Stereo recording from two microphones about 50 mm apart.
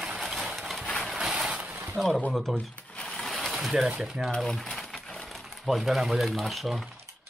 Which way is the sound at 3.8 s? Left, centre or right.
Centre.